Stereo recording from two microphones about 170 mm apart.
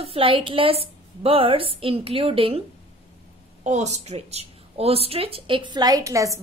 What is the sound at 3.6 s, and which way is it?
Speech, 40° right (ahead or behind).